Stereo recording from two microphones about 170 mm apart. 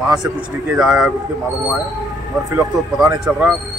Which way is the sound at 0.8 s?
Centre (ahead or behind).